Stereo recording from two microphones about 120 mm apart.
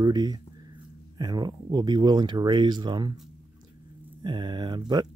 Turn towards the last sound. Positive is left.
turn(degrees=-35)  # may be behind; listen again after turning